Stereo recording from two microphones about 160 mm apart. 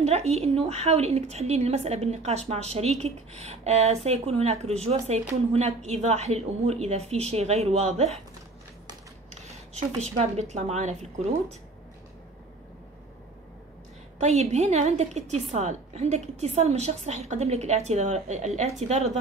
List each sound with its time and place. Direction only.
0.0 s a woman's voice: 40° right (ahead or behind)
9.3 s speech: 45° right (ahead or behind)
14.2 s a woman's voice: 45° right (ahead or behind)